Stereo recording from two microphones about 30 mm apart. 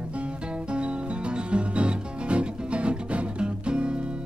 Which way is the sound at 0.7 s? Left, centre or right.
Right.